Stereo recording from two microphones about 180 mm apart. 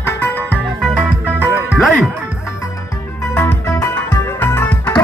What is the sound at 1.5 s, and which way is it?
Music, 5° right (ahead or behind).